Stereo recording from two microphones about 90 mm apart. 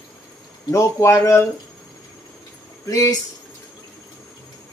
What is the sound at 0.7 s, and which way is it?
Speech, 35° left (ahead or behind).